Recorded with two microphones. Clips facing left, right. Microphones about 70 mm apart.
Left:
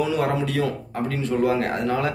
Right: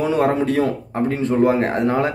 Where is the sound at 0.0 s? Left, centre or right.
Right.